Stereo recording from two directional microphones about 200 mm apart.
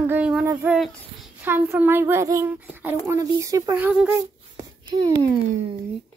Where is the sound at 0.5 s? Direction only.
10° right (ahead or behind).